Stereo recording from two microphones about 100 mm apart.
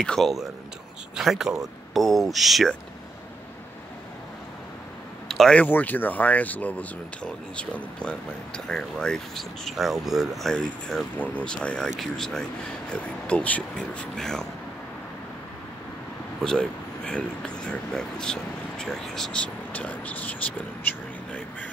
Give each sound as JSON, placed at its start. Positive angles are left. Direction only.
{"t": 0.0, "sound": "speech", "side_deg": 5}
{"t": 5.3, "sound": "speech", "side_deg": 5}
{"t": 5.6, "sound": "speech", "side_deg": 15}
{"t": 16.4, "sound": "speech", "side_deg": 10}